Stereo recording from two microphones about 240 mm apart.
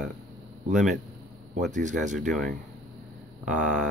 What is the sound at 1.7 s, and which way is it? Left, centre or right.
Speech, right.